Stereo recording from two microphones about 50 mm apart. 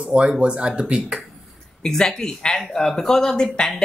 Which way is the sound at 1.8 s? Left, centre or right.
Centre.